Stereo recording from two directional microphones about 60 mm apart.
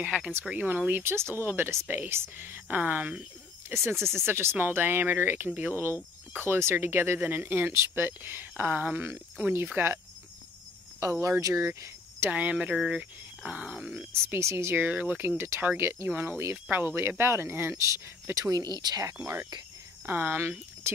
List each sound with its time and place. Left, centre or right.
0.0 s groan: centre
0.5 s speech: centre; by 2.3 s right
2.3 s speech: right
3.9 s speech: centre
4.3 s speech: right
7.7 s speech: right
11.0 s speech: right
12.3 s speech: right
12.7 s speech: centre
13.5 s groan: centre
14.1 s speech: right
16.1 s speech: right
17.8 s speech: right
20.1 s speech: right